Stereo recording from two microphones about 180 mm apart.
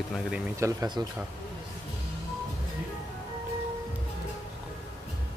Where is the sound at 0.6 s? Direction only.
20° right (ahead or behind).